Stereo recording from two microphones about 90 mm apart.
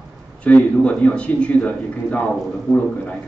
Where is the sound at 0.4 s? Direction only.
15° left (ahead or behind).